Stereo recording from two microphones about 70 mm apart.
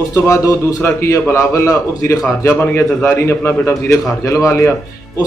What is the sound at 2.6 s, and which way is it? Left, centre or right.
A man's voice, left.